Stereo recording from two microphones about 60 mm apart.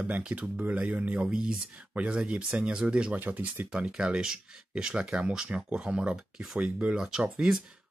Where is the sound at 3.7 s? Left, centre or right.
Centre.